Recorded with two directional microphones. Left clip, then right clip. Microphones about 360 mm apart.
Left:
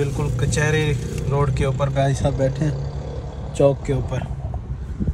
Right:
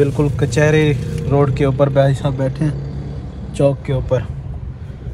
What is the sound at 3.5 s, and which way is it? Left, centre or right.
Vehicle, right.